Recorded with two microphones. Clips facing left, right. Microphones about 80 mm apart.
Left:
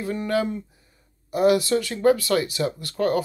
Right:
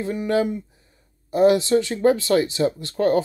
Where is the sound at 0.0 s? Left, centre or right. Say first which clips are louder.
Right 3 dB; right.